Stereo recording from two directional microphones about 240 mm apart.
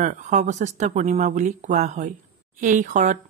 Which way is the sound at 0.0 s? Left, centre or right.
Right.